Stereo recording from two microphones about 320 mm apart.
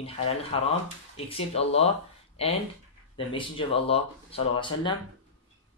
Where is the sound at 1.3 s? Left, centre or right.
Centre.